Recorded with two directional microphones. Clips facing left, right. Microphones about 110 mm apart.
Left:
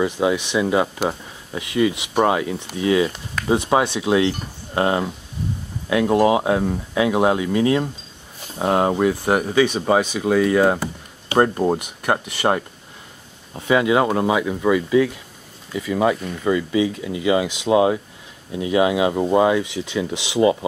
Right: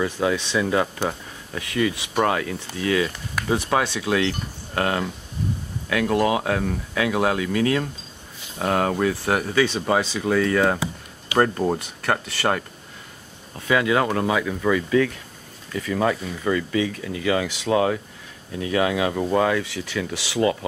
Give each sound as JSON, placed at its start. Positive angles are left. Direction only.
{"t": 0.0, "sound": "speech", "side_deg": 15}